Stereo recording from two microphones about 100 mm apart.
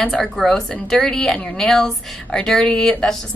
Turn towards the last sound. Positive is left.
turn(degrees=5)  # may be behind; listen again after turning